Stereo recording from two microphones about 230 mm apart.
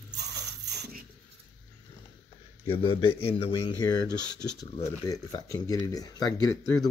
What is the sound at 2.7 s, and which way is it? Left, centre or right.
Speech, left.